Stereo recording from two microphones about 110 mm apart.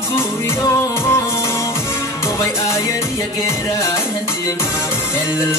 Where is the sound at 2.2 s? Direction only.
25° left (ahead or behind).